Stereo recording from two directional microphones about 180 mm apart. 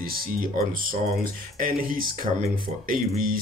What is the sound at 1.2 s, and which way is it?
Speech, 50° right (ahead or behind).